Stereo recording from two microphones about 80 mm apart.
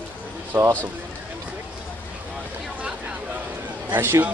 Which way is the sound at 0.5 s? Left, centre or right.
Right.